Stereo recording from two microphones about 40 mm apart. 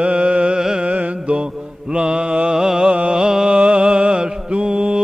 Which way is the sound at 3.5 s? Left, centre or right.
Right.